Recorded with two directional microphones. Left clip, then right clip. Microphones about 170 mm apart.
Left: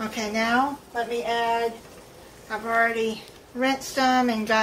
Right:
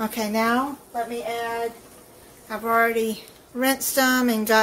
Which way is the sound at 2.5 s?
60° right (ahead or behind).